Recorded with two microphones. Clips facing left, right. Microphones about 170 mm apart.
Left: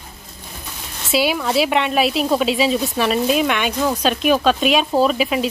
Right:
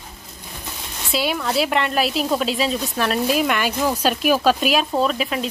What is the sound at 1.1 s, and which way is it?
Speech, 5° left (ahead or behind).